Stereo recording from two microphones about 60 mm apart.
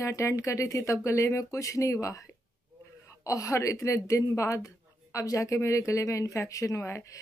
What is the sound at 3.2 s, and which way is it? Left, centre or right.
Speech, left.